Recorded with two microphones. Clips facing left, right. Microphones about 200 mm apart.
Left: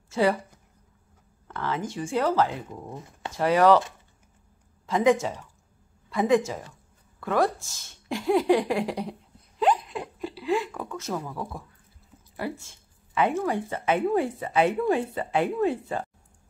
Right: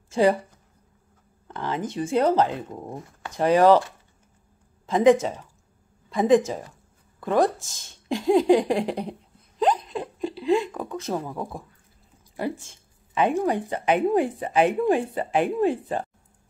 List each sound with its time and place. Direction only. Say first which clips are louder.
0.1 s speech: right 3 dB; 15° right (ahead or behind)
1.5 s speech: right 2 dB; 15° right (ahead or behind)
4.8 s speech: right 4 dB; 20° right (ahead or behind)
9.6 s hiccup: right 1 dB; 35° right (ahead or behind)
10.2 s a sound: right 5 dB; 20° right (ahead or behind)
11.1 s speech: right 3 dB; 25° right (ahead or behind)
12.4 s a sound: right 4 dB; 15° right (ahead or behind)
13.5 s speech: right 3 dB; 15° right (ahead or behind)